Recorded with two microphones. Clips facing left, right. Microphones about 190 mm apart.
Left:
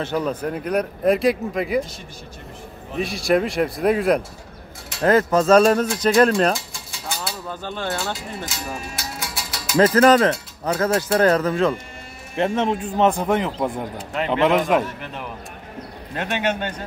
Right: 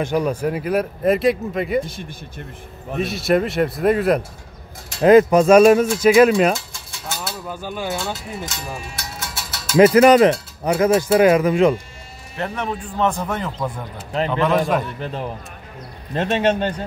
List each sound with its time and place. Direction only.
0.0 s speech: 10° right (ahead or behind)
3.0 s speech: centre (ahead or behind)
5.0 s speech: 15° right (ahead or behind)
7.1 s a sound: 5° right (ahead or behind)
8.0 s speech: 5° right (ahead or behind)
9.8 s speech: 10° right (ahead or behind)
12.4 s speech: 20° left (ahead or behind)
15.0 s a man's voice: 30° right (ahead or behind)